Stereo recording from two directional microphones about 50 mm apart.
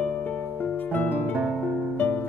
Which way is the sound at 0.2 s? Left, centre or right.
Left.